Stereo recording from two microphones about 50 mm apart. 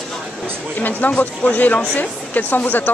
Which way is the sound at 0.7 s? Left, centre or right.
Left.